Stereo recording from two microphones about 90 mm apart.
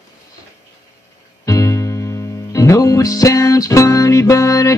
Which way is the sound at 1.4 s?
35° left (ahead or behind).